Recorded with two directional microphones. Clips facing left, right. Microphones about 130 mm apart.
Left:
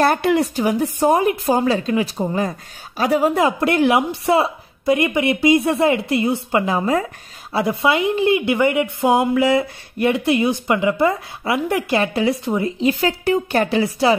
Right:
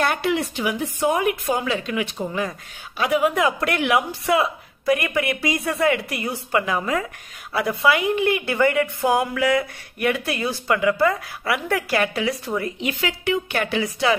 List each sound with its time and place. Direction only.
0.0 s a woman's voice: 45° left (ahead or behind); by 12.7 s 20° left (ahead or behind)
12.8 s a woman's voice: 40° left (ahead or behind)